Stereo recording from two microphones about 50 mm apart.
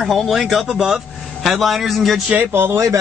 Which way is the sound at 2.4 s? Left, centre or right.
Right.